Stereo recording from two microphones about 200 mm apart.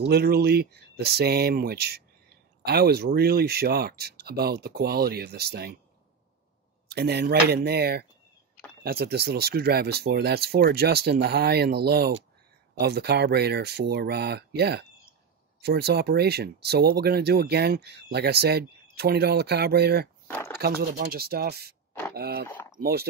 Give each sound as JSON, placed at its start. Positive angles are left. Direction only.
{"t": 0.0, "sound": "speech", "side_deg": -50}
{"t": 6.9, "sound": "speech", "side_deg": -55}
{"t": 20.2, "sound": "speech", "side_deg": 10}
{"t": 20.5, "sound": "speech", "side_deg": -50}
{"t": 22.5, "sound": "a sound", "side_deg": 10}
{"t": 22.8, "sound": "speech", "side_deg": -50}